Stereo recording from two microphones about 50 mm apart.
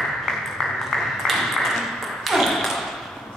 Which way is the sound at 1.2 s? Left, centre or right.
Centre.